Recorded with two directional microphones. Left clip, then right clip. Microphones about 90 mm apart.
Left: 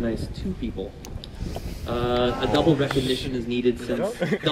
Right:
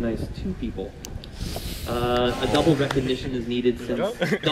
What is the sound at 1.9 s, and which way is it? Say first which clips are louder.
Speech: even; 10° left (ahead or behind).